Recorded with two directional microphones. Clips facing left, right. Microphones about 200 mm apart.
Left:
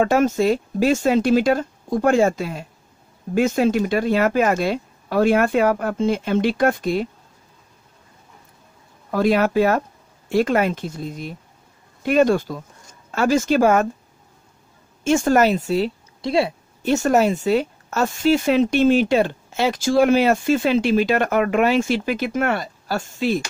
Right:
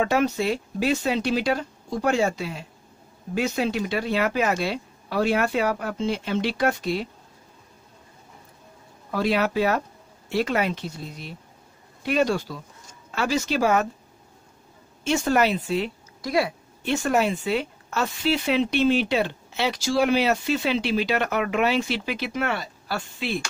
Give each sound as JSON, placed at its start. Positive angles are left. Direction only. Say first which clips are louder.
{"t": 0.0, "sound": "speech", "louder": "left 5 dB", "side_deg": 45}
{"t": 9.1, "sound": "speech", "louder": "left 5 dB", "side_deg": 50}
{"t": 15.0, "sound": "speech", "louder": "left 5 dB", "side_deg": 45}
{"t": 16.2, "sound": "speech", "louder": "left 4 dB", "side_deg": 25}
{"t": 16.8, "sound": "speech", "louder": "left 5 dB", "side_deg": 40}